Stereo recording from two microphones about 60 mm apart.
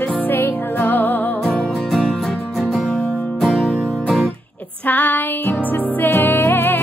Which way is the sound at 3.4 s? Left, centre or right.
Centre.